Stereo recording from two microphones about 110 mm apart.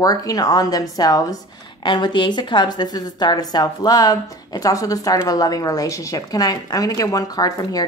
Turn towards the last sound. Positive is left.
turn(degrees=35)  # may be behind; listen again after turning